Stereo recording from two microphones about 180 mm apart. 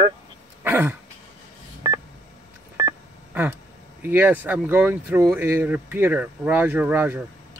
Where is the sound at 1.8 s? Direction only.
25° right (ahead or behind).